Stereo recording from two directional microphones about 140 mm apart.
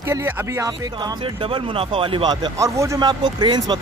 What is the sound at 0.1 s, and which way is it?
Speech, 20° right (ahead or behind).